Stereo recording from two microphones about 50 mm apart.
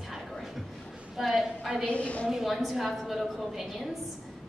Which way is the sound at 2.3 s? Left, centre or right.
Centre.